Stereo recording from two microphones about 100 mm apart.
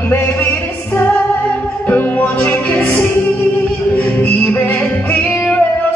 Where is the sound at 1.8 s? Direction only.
15° left (ahead or behind).